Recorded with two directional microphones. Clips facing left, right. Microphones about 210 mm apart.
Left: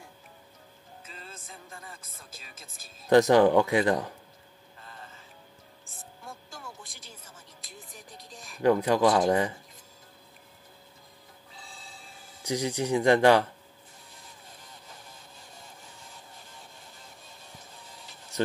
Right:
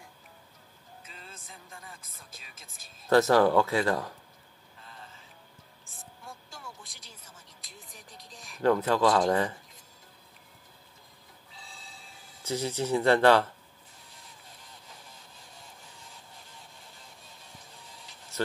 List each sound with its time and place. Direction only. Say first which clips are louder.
1.0 s music: left 4 dB; centre (ahead or behind)
1.9 s speech: left 2 dB; centre (ahead or behind)
3.1 s speech: left 3 dB; 15° left (ahead or behind)
6.5 s a sound: left 2 dB; centre (ahead or behind)
8.6 s speech: left 2 dB; 15° left (ahead or behind)
12.4 s speech: left 2 dB; 15° left (ahead or behind)